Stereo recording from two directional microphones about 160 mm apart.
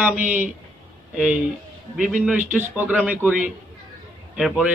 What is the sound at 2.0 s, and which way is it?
A man's voice, 5° right (ahead or behind).